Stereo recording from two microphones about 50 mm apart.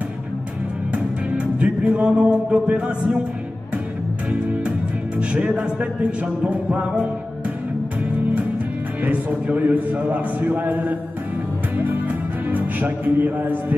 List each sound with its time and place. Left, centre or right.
0.9 s music: right
5.3 s music: right
9.0 s a man's voice: right
11.7 s music: right
12.4 s speech: right